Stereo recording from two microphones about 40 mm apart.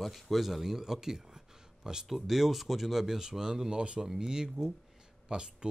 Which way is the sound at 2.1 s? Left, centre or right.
Centre.